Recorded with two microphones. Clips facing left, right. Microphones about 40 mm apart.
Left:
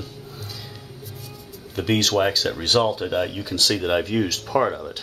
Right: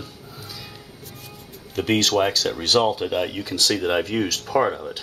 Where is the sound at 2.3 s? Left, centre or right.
Centre.